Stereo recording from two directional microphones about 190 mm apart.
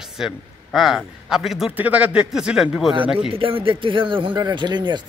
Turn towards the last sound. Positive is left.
turn(degrees=-25)  # may be behind; listen again after turning